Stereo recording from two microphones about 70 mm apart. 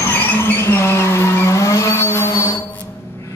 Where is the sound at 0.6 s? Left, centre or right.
Left.